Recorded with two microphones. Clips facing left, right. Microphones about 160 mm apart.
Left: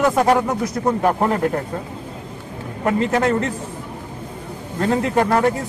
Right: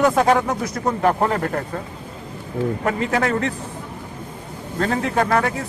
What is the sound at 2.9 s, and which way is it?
Speech, 20° left (ahead or behind).